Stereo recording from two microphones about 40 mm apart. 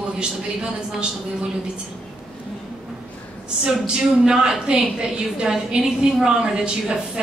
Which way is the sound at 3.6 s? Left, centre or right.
Right.